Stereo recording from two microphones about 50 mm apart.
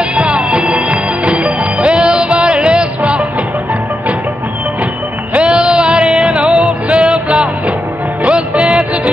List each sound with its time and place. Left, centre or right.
0.1 s music: right
5.3 s music: right